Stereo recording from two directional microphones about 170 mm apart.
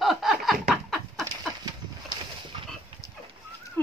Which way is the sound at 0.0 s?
Centre (ahead or behind).